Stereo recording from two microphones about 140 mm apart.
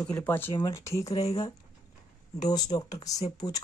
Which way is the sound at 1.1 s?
45° left (ahead or behind).